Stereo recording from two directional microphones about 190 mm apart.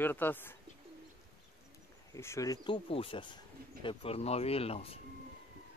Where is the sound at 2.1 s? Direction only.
15° left (ahead or behind); by 5.0 s 30° left (ahead or behind).